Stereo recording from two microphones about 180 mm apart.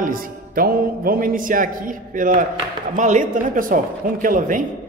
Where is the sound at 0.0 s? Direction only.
50° right (ahead or behind).